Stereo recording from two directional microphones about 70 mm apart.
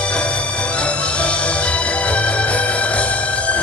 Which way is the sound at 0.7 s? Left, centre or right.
Centre.